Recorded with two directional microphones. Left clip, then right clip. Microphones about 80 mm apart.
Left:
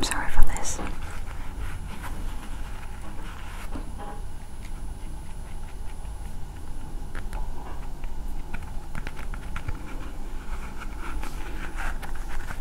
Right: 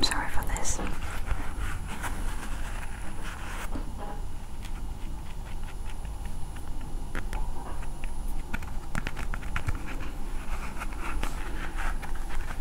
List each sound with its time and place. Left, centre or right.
0.0 s whispering: centre
1.1 s vehicle: right
8.5 s a sound: right
10.8 s writing: right
11.4 s vehicle: centre
12.0 s a sound: centre